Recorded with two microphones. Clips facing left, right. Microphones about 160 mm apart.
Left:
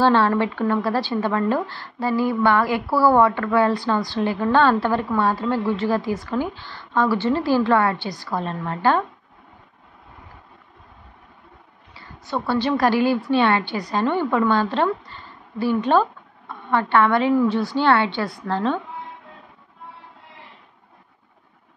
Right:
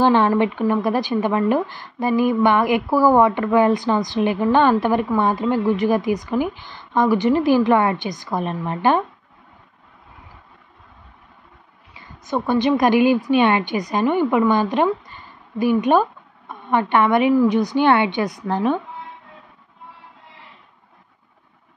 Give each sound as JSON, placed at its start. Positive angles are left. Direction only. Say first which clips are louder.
{"t": 0.0, "sound": "a woman's voice", "louder": "right 2 dB", "side_deg": -15}
{"t": 11.9, "sound": "a woman's voice", "louder": "right 3 dB", "side_deg": -15}